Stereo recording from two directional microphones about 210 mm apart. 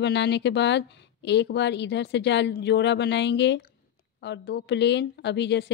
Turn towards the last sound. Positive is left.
turn(degrees=55)  # may be behind; listen again after turning